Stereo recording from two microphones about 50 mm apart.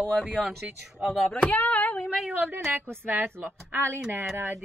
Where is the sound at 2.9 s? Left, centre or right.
Right.